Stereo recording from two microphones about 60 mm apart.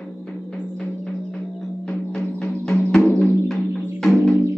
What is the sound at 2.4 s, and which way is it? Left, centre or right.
Music, centre.